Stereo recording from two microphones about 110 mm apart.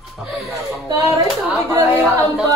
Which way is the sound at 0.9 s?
35° right (ahead or behind).